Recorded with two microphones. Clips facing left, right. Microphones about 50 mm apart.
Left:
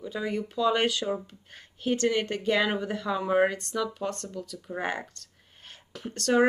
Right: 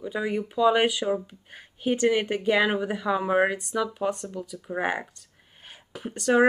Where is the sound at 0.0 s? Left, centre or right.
Centre.